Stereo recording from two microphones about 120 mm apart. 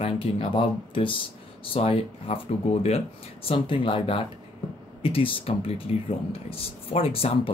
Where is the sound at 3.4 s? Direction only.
45° left (ahead or behind).